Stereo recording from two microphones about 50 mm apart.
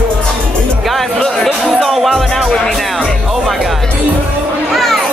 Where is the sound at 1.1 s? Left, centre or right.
Centre.